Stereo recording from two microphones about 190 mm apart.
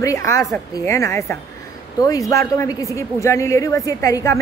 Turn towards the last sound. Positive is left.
turn(degrees=15)  # may be behind; listen again after turning